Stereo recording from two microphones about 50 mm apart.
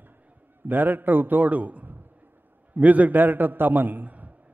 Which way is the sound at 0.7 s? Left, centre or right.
Right.